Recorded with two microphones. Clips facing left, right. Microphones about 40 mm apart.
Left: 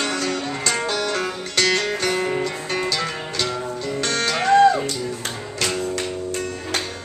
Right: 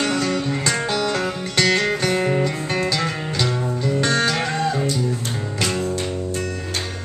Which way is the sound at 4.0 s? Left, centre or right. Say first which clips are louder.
Right 4 dB; centre.